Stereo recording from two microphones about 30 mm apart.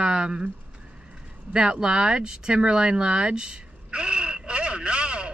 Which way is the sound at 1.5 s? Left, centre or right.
Right.